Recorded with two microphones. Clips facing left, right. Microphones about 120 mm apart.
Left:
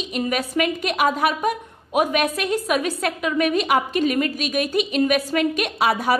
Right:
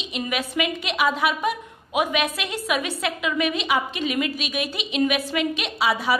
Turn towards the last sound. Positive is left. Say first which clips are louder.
# left 3 dB
turn(degrees=50)  # may be behind; listen again after turning